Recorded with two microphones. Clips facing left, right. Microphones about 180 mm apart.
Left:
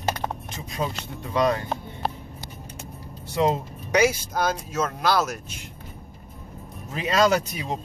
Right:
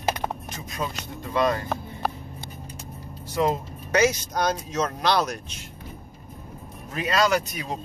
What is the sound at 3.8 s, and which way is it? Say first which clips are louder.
Speech: left 1 dB; 10° left (ahead or behind).